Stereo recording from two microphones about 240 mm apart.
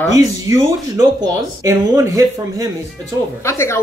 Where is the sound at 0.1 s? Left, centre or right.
Centre.